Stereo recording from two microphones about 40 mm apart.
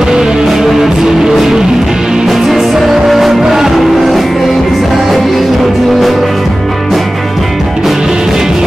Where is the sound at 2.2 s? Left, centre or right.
Centre.